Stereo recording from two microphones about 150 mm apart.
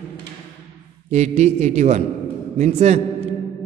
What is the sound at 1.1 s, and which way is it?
A man's voice, 50° right (ahead or behind).